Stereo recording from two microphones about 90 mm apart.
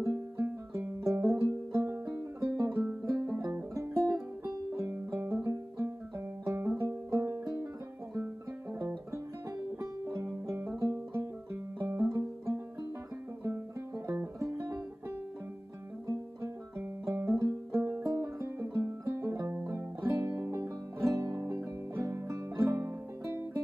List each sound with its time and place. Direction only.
0.0 s music: 35° right (ahead or behind)
1.9 s music: 25° right (ahead or behind)
2.4 s music: 40° right (ahead or behind)
3.0 s music: 30° right (ahead or behind)
8.7 s music: 40° right (ahead or behind)
10.0 s banjo: 35° right (ahead or behind)
10.8 s music: 35° right (ahead or behind)
16.1 s music: 30° right (ahead or behind)